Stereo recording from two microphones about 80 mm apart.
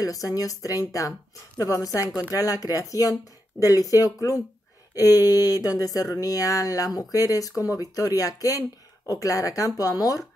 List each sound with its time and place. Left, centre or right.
0.0 s speech: left